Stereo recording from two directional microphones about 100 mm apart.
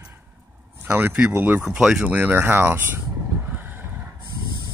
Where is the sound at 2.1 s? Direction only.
20° right (ahead or behind).